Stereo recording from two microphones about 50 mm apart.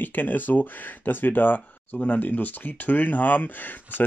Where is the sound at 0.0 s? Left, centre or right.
Left.